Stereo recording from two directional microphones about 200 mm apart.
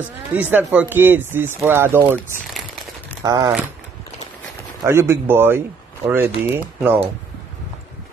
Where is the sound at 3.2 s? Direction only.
15° right (ahead or behind).